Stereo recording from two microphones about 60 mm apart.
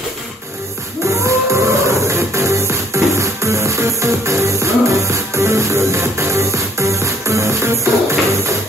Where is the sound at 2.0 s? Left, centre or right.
Right.